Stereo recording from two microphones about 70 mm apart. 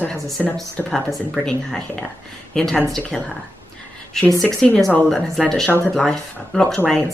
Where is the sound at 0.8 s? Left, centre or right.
Left.